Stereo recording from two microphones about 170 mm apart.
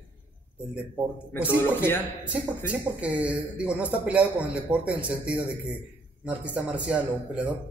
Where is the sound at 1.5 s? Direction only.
15° left (ahead or behind).